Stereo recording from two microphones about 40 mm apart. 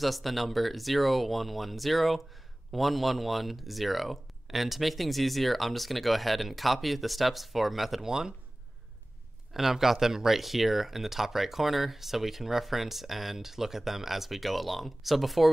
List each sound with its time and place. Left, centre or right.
0.0 s speech: centre
9.5 s speech: centre